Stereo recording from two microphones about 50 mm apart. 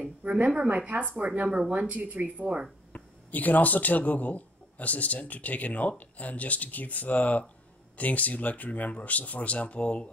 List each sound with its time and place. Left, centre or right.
0.0 s speech: right
2.9 s speech: left